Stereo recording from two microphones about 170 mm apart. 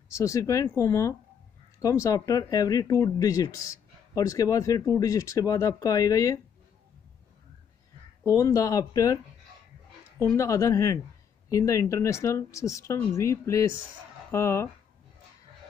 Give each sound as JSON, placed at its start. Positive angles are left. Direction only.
{"t": 0.1, "sound": "speech", "side_deg": 20}
{"t": 8.2, "sound": "speech", "side_deg": 15}